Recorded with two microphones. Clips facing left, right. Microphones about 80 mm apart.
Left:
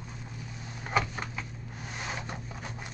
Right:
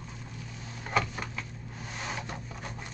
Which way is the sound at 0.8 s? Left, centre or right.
Centre.